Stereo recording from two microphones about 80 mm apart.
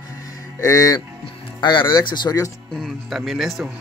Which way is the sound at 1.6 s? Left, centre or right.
Left.